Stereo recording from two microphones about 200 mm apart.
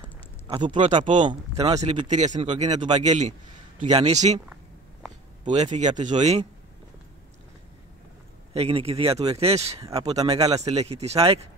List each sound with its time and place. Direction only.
0.5 s speech: 25° right (ahead or behind)
5.5 s speech: 35° right (ahead or behind)
8.5 s speech: 30° right (ahead or behind)